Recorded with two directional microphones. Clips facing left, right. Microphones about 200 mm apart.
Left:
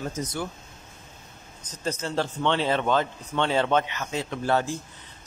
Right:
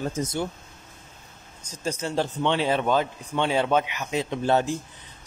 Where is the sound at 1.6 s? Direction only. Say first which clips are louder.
Right 1 dB; 10° right (ahead or behind).